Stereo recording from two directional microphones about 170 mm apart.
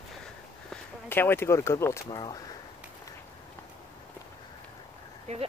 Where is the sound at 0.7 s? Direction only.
10° left (ahead or behind).